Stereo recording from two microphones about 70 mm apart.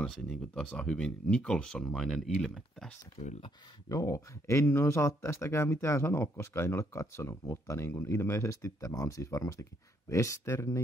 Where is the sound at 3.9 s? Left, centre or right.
Left.